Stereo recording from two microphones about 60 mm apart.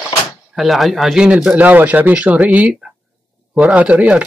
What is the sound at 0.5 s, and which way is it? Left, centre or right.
Speech, centre.